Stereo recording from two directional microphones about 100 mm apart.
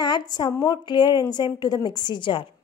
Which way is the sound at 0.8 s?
50° left (ahead or behind).